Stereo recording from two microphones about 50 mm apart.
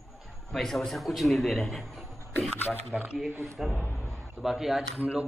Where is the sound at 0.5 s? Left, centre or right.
Centre.